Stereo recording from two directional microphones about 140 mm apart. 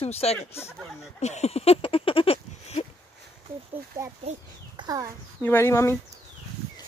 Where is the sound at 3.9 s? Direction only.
20° right (ahead or behind).